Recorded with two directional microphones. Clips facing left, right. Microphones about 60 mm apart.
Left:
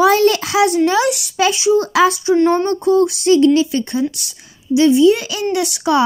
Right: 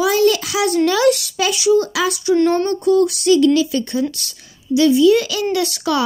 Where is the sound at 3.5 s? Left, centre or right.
Left.